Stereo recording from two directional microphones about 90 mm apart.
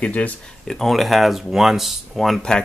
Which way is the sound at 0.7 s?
Centre (ahead or behind).